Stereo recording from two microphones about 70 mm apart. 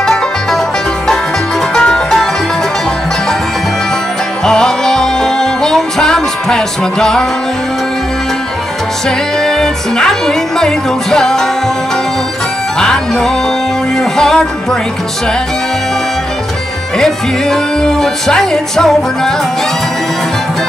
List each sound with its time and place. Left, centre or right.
0.0 s music: centre
1.8 s music: centre
4.5 s music: centre
9.4 s music: centre
12.7 s music: centre
17.0 s music: centre